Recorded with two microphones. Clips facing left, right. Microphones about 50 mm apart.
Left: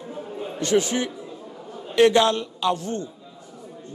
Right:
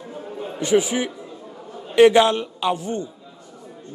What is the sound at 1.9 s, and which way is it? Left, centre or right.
A man's voice, centre.